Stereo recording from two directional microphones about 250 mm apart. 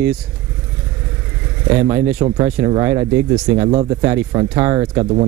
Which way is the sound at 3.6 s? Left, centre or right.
Right.